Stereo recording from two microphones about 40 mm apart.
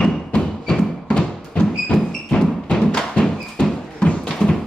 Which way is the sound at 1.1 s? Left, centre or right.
Left.